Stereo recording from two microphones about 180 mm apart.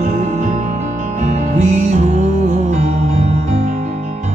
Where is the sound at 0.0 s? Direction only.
40° right (ahead or behind).